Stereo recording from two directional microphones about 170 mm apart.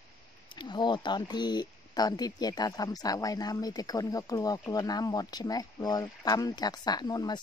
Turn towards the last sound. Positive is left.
turn(degrees=25)  # may be behind; listen again after turning